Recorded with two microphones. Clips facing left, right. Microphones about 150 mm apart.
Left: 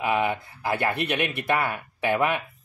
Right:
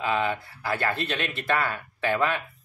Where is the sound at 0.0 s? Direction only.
15° left (ahead or behind).